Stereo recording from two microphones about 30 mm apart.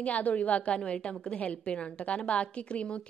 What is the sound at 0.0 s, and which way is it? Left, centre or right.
Speech, left.